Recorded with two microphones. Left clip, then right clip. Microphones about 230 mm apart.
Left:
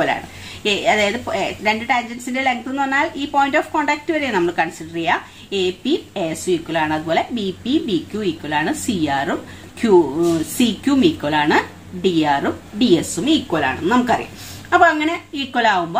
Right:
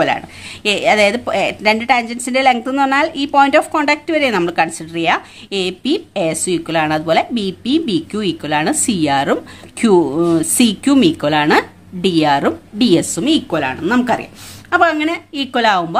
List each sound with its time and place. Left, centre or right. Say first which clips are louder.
0.7 s a woman's voice: right 4 dB; right